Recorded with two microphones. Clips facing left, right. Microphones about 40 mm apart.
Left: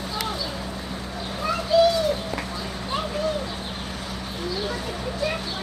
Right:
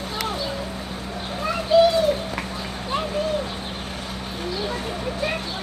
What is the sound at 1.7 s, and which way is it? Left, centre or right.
Pigeon, right.